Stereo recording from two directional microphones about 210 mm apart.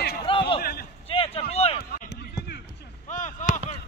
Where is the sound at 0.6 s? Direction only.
45° left (ahead or behind).